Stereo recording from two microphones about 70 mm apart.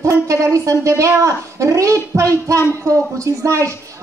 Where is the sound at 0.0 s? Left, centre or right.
Right.